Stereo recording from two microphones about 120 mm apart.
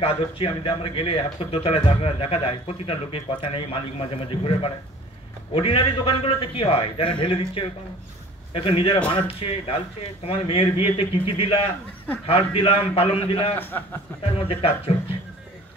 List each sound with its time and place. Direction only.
0.0 s speech: 45° left (ahead or behind)
13.6 s a man's voice: 15° left (ahead or behind)
14.2 s speech: 50° left (ahead or behind)